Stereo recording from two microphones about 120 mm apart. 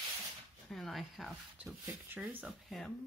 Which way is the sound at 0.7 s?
Centre (ahead or behind).